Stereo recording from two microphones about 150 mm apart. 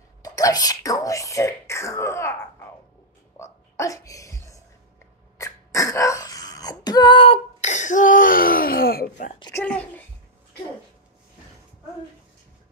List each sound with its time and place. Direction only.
0.2 s speech: 25° left (ahead or behind)
3.3 s a sound: 20° left (ahead or behind)
5.4 s throat clearing: 20° left (ahead or behind)
7.6 s speech: 55° left (ahead or behind); by 9.3 s 85° left
9.5 s speech: 10° left (ahead or behind)